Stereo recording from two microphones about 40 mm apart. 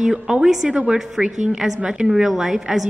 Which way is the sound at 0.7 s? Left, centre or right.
Right.